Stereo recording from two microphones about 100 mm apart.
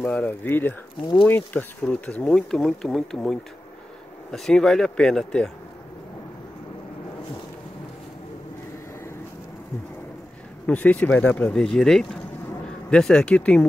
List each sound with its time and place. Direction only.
0.0 s speech: 15° left (ahead or behind)
10.7 s speech: 15° left (ahead or behind)